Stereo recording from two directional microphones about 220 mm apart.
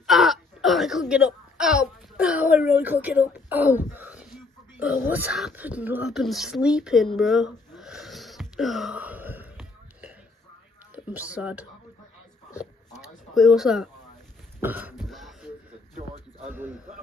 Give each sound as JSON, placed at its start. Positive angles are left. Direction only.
{"t": 0.0, "sound": "wail", "side_deg": 0}
{"t": 5.1, "sound": "speech", "side_deg": -5}
{"t": 7.2, "sound": "wheeze", "side_deg": 0}
{"t": 11.1, "sound": "speech", "side_deg": -5}
{"t": 13.3, "sound": "speech", "side_deg": 0}
{"t": 14.6, "sound": "throat clearing", "side_deg": -10}
{"t": 16.4, "sound": "a sound", "side_deg": -10}